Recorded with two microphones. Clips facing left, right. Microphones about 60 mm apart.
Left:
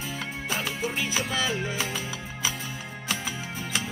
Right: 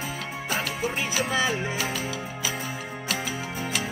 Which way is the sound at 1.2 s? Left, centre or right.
Right.